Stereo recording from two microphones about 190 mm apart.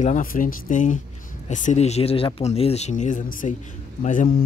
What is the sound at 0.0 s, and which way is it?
Speech, 45° left (ahead or behind).